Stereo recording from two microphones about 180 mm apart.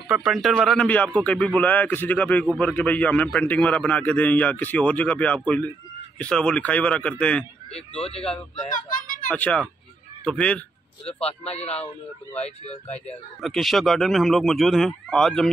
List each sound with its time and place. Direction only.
0.1 s a man's voice: centre (ahead or behind)
7.7 s speech: 35° left (ahead or behind)
9.3 s a man's voice: 10° left (ahead or behind)
11.1 s speech: 35° left (ahead or behind)
13.4 s speech: centre (ahead or behind)